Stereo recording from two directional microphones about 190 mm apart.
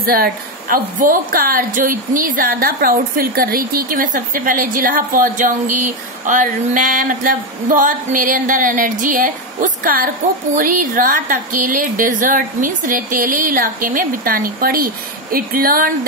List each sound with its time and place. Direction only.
0.0 s a woman's voice: 50° right (ahead or behind)